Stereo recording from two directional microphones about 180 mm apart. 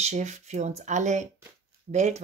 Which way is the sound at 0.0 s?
40° right (ahead or behind).